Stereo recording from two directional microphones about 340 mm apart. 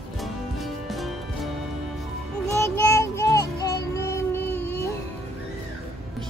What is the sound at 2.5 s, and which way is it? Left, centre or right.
Child singing, centre.